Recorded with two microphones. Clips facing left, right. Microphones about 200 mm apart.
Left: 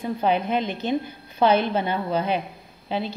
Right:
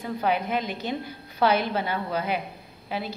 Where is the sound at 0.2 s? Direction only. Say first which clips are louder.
Left 3 dB; 25° left (ahead or behind).